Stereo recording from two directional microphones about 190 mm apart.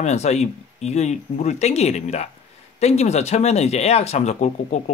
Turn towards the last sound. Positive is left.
turn(degrees=35)  # may be behind; listen again after turning